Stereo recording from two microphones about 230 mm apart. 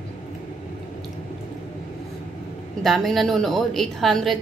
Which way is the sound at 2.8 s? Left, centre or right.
Centre.